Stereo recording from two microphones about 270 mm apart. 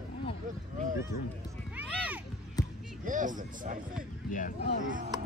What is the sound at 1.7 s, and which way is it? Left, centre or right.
Music, centre.